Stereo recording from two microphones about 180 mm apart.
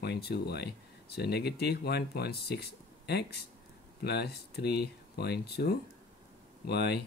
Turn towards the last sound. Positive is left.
turn(degrees=65)  # may be behind; listen again after turning